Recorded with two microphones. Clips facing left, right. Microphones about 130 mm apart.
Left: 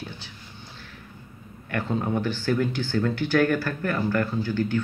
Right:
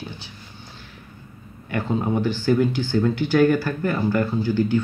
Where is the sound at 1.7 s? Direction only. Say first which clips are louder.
Right 3 dB; 10° right (ahead or behind).